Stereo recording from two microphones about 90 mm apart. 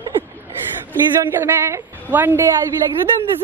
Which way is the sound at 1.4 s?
25° right (ahead or behind).